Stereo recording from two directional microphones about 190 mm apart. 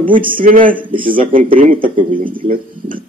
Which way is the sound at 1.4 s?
45° right (ahead or behind).